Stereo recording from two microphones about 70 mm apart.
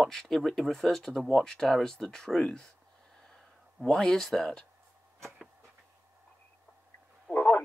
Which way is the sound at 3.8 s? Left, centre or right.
Centre.